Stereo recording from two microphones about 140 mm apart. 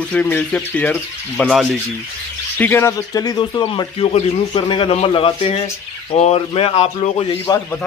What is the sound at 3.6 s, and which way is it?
A man's voice, 40° left (ahead or behind).